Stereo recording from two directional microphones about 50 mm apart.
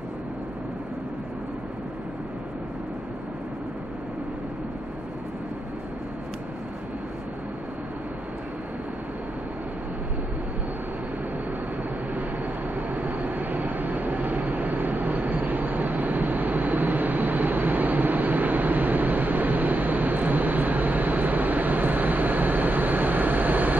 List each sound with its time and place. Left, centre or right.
12.7 s vehicle: right